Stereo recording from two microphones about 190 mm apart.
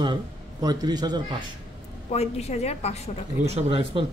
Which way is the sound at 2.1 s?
35° left (ahead or behind).